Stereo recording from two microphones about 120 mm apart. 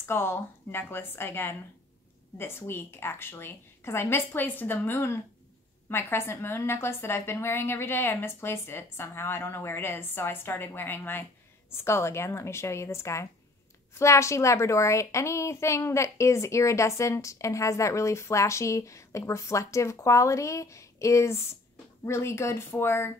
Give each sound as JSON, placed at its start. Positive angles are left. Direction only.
{"t": 0.0, "sound": "a woman's voice", "side_deg": 20}